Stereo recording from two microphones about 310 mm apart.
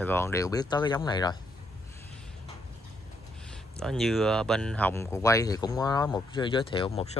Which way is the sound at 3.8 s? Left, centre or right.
Centre.